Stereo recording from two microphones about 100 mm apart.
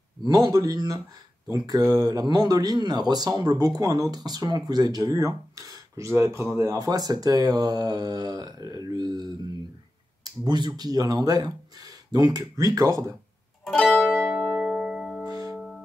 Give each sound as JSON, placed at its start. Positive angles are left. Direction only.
{"t": 0.2, "sound": "speech", "side_deg": -40}
{"t": 6.8, "sound": "speech", "side_deg": -40}
{"t": 13.7, "sound": "music", "side_deg": 5}
{"t": 14.2, "sound": "music", "side_deg": -5}
{"t": 15.2, "sound": "music", "side_deg": -40}
{"t": 15.5, "sound": "music", "side_deg": 0}